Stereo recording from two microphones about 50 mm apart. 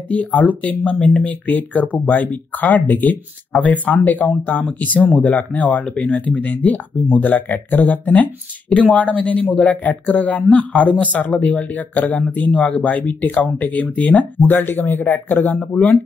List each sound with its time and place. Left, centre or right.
0.1 s speech: left